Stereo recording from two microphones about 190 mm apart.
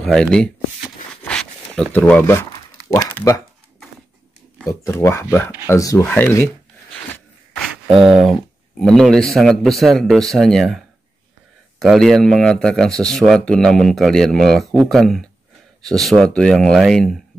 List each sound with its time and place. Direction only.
0.0 s speech: 5° left (ahead or behind)
1.2 s a sound: 5° left (ahead or behind)
2.0 s speech: 5° left (ahead or behind)
4.6 s speech: 15° left (ahead or behind)
7.9 s speech: centre (ahead or behind)
11.8 s speech: centre (ahead or behind)